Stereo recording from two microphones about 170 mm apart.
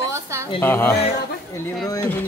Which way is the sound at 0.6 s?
15° left (ahead or behind).